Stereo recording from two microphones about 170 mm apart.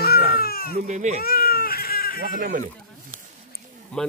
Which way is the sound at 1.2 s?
60° left (ahead or behind).